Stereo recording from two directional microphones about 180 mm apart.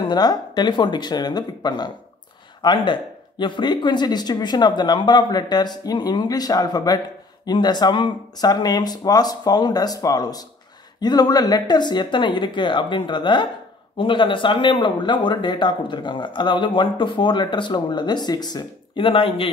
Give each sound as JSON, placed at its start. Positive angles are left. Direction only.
{"t": 0.0, "sound": "speech", "side_deg": 20}